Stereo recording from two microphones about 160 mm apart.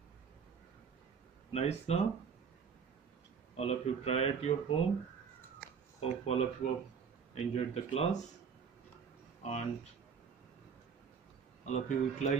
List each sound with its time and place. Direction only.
1.5 s speech: 40° left (ahead or behind)
3.5 s speech: 40° left (ahead or behind)
5.9 s a man's voice: 40° left (ahead or behind)
9.4 s speech: 45° left (ahead or behind)
11.6 s a man's voice: 50° left (ahead or behind)